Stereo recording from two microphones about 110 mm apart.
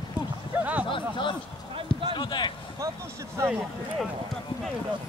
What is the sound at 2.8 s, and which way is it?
Speech, 30° right (ahead or behind).